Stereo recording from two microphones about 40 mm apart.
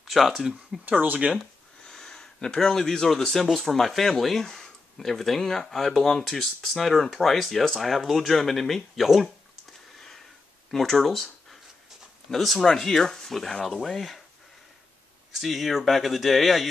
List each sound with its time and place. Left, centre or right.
0.0 s speech: centre
0.8 s speech: right
1.9 s speech: centre
9.9 s sniff: centre
10.7 s speech: centre
12.3 s speech: centre
15.3 s speech: centre